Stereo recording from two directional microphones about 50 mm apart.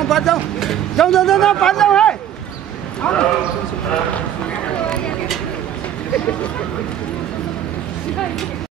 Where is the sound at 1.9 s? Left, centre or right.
Centre.